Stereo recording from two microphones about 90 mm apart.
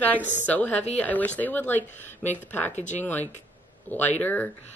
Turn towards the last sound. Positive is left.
turn(degrees=20)  # may be behind; listen again after turning